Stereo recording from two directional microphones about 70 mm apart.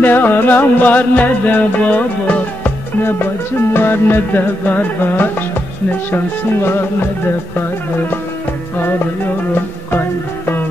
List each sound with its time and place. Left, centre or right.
0.0 s music: left
3.0 s speech: left
3.7 s music: left
5.9 s speech: left